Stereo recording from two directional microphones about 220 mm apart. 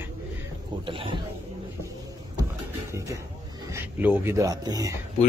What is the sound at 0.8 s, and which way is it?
Speech, 25° right (ahead or behind).